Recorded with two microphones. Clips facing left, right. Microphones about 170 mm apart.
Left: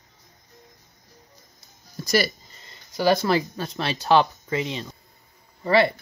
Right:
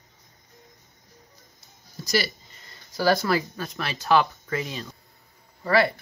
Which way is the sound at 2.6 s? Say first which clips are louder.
Left 2 dB; 20° left (ahead or behind).